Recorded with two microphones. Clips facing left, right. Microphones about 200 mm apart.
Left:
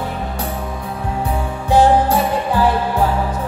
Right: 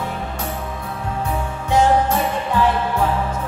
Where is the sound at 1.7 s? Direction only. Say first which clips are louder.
Left 3 dB; 35° left (ahead or behind).